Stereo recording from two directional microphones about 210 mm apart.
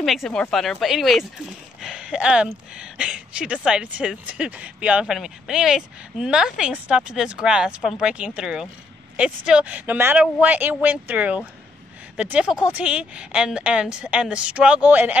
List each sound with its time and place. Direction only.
0.0 s speech: centre (ahead or behind)